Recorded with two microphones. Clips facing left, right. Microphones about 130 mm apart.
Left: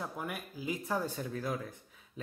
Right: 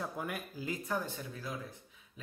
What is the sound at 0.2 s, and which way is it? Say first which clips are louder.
Speech: even; 5° left (ahead or behind).